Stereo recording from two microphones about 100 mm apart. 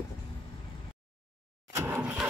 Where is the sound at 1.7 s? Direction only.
25° right (ahead or behind).